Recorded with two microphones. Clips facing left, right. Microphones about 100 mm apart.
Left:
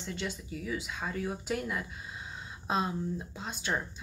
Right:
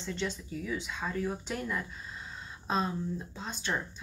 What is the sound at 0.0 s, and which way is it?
Speech, 10° left (ahead or behind).